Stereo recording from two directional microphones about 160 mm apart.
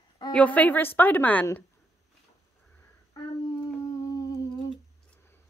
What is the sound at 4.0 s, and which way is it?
Humming, 20° left (ahead or behind).